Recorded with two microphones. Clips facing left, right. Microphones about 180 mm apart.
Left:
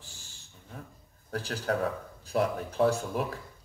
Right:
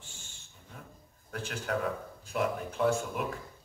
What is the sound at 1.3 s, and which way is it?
Speech, 35° left (ahead or behind).